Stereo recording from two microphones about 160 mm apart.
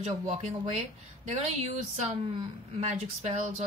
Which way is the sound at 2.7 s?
40° right (ahead or behind).